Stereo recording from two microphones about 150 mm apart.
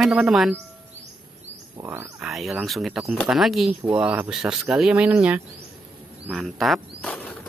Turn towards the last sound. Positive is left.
turn(degrees=10)  # may be behind; listen again after turning